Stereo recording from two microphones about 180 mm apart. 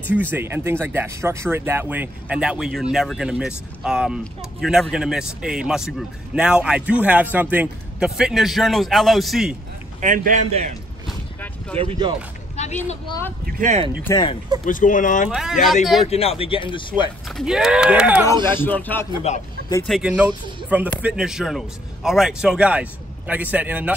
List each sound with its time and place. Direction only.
0.1 s a man's voice: 10° right (ahead or behind)
9.9 s a man's voice: 45° right (ahead or behind)
12.5 s a sound: 40° left (ahead or behind)
13.6 s a man's voice: 40° right (ahead or behind)
14.0 s speech: 20° left (ahead or behind)
14.6 s speech: 45° left (ahead or behind)
15.2 s speech: 5° right (ahead or behind)
16.1 s speech: 35° left (ahead or behind)
17.3 s speech: centre (ahead or behind)
18.6 s speech: 10° left (ahead or behind)
19.3 s speech: 40° left (ahead or behind)
19.9 s a man's voice: 5° right (ahead or behind)